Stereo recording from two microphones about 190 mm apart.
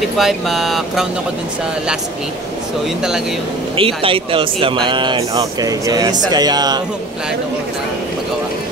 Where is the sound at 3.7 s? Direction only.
30° right (ahead or behind).